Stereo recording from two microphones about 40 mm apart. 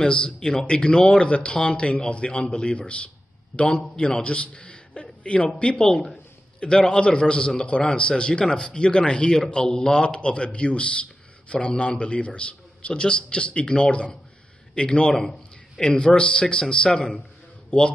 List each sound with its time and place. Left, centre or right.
0.0 s a man's voice: centre
5.8 s speech: centre
6.6 s a man's voice: left